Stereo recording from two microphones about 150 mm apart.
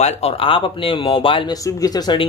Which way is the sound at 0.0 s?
40° left (ahead or behind).